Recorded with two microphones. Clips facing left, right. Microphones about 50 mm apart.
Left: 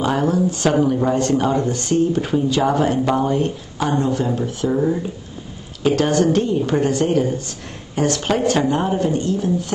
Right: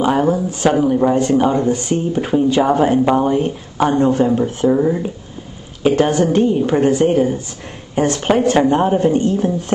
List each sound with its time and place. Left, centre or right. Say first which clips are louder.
0.0 s speech: right 3 dB; centre
3.7 s speech: right 7 dB; right
5.8 s speech: right 3 dB; centre